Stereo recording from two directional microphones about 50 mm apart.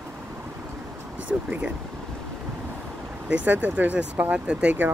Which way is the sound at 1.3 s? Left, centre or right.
Right.